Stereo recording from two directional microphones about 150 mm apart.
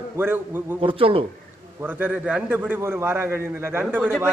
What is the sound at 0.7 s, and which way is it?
Speech, 35° right (ahead or behind).